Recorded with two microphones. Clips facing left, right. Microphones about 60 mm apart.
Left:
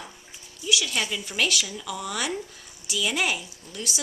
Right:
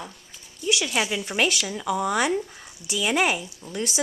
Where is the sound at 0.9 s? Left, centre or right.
Centre; by 3.9 s right.